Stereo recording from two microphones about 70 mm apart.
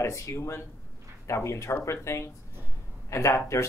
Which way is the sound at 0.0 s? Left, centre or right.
Left.